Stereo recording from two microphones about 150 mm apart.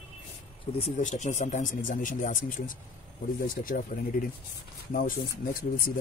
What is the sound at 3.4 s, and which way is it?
Speech, 65° left (ahead or behind).